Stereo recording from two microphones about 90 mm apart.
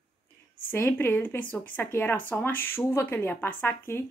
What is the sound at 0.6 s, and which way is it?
Speech, 20° left (ahead or behind).